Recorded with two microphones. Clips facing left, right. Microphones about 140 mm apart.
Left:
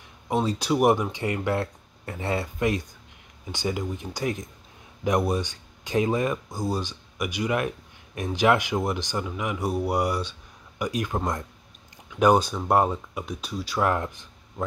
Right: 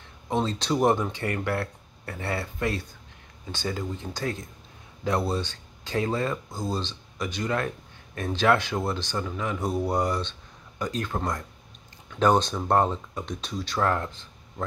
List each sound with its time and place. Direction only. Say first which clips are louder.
0.3 s speech: left 2 dB; 10° left (ahead or behind)